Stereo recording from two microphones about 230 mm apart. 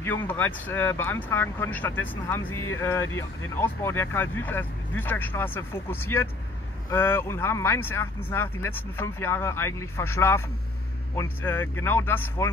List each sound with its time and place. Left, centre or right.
0.0 s speech: centre
11.4 s speech: centre